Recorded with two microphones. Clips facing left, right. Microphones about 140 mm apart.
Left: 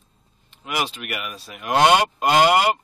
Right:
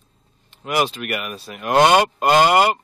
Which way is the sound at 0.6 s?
50° right (ahead or behind).